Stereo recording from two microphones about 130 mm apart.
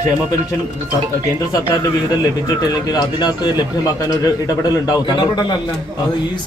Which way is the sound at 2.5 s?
30° left (ahead or behind).